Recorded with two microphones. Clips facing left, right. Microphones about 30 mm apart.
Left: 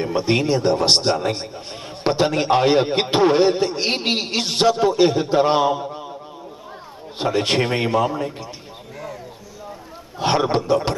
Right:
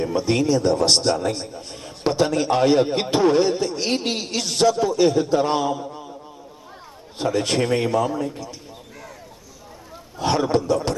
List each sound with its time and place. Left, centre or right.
0.0 s a man's voice: left
7.2 s a man's voice: left
10.1 s a man's voice: left